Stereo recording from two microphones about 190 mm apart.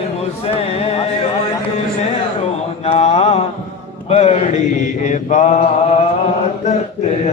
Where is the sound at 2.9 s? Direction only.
35° left (ahead or behind).